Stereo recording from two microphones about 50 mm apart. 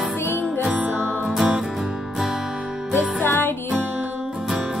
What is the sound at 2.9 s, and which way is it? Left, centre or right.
Music, left.